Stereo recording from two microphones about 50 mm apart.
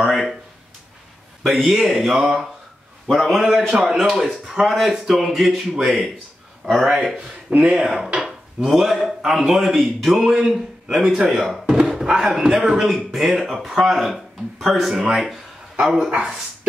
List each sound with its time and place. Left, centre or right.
0.0 s speech: centre
1.4 s speech: centre
3.3 s speech: centre
3.7 s speech: centre
4.0 s speech: centre
11.8 s a sound: centre
12.1 s speech: centre
16.1 s speech: centre